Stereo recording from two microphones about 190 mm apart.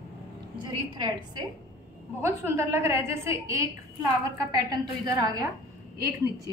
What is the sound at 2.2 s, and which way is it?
A woman's voice, 15° right (ahead or behind).